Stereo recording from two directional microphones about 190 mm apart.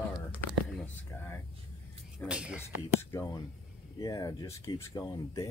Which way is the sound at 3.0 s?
15° left (ahead or behind).